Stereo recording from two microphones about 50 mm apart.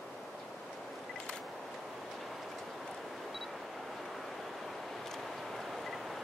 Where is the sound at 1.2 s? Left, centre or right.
Centre.